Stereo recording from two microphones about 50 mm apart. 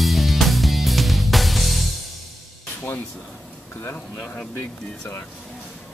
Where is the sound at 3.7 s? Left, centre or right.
Left.